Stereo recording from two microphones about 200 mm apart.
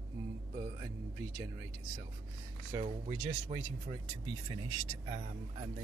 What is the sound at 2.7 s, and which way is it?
Speech, 25° right (ahead or behind).